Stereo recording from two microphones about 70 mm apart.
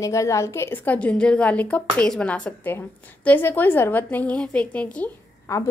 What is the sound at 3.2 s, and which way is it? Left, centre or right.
A woman's voice, left.